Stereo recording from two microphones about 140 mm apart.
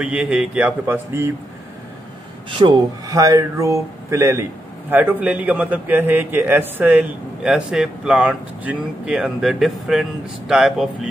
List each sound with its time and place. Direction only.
0.0 s a man's voice: 5° right (ahead or behind)
2.6 s speech: 35° right (ahead or behind)
3.1 s a man's voice: 25° right (ahead or behind); by 11.1 s 5° right (ahead or behind)